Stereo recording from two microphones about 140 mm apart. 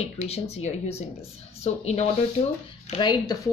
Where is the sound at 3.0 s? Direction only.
25° left (ahead or behind).